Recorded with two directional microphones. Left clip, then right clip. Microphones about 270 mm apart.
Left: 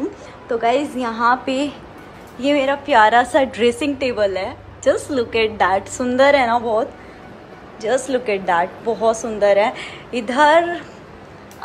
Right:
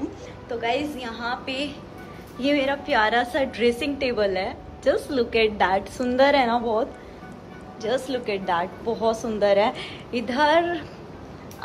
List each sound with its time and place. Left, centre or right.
0.5 s a woman's voice: left